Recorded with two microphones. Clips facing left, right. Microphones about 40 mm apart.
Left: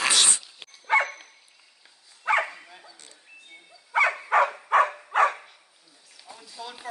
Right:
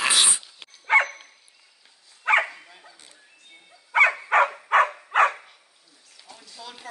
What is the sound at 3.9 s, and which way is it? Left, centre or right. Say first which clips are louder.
Dog: right 3 dB; right.